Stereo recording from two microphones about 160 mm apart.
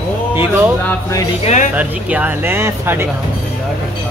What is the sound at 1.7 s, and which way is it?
Speech, 10° right (ahead or behind).